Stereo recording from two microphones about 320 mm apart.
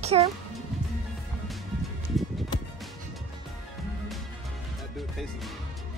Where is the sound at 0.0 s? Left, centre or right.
Centre.